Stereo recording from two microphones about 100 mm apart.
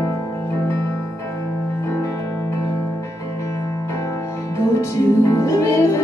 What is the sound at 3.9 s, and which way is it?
Music, 30° left (ahead or behind).